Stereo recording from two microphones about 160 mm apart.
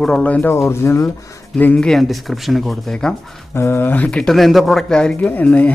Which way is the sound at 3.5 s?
15° left (ahead or behind).